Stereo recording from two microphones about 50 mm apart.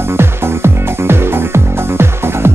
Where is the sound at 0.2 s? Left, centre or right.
Right.